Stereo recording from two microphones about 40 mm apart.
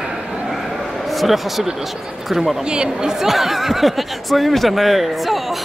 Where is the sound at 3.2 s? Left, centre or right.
Centre.